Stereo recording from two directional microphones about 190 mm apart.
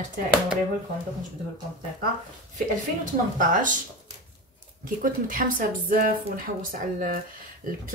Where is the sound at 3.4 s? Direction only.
45° right (ahead or behind).